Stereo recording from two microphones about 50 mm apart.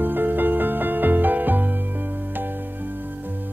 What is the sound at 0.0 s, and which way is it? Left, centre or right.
Music, right.